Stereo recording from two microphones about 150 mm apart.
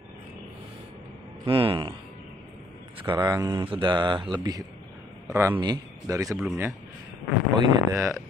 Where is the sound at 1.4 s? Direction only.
35° right (ahead or behind).